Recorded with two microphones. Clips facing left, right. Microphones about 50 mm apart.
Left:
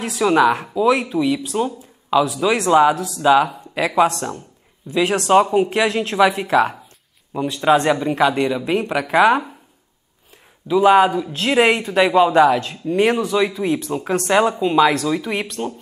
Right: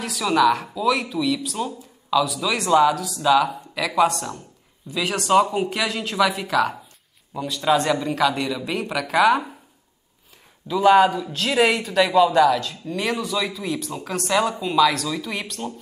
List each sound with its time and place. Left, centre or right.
0.0 s a man's voice: left
10.7 s a man's voice: centre; by 15.7 s left